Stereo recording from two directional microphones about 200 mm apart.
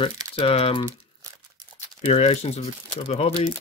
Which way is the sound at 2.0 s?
30° left (ahead or behind).